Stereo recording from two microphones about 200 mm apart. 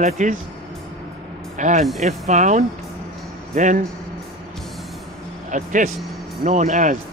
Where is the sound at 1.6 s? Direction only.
35° right (ahead or behind).